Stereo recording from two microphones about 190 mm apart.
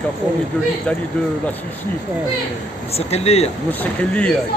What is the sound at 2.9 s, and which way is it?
Speech, 35° left (ahead or behind).